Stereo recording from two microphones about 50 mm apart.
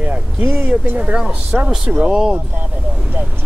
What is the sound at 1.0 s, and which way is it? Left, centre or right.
Speech, centre.